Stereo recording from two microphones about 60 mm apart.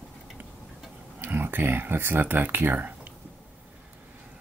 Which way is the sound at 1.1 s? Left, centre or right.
Right.